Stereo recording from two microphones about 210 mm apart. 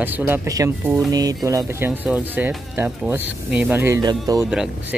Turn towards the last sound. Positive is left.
turn(degrees=-5)  # may be behind; listen again after turning